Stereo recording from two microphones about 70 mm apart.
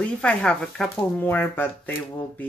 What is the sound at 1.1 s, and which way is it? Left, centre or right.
Speech, left.